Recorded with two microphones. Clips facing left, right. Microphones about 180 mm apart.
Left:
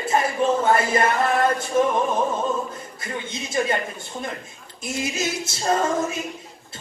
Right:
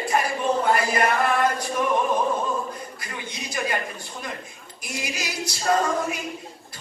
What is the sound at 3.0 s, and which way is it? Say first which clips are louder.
Speech: left 8 dB; 25° left (ahead or behind).